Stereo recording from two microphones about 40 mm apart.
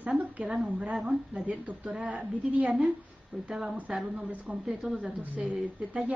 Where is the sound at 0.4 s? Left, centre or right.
Centre.